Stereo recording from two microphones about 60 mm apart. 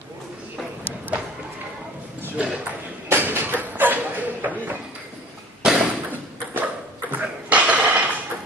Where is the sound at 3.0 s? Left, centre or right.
Right.